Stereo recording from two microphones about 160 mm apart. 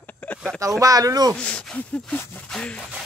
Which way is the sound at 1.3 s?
5° left (ahead or behind).